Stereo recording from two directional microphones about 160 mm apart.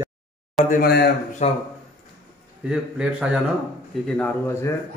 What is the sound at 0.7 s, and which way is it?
Speech, 75° left (ahead or behind).